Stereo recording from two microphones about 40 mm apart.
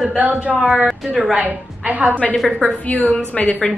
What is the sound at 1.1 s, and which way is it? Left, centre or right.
Speech, centre.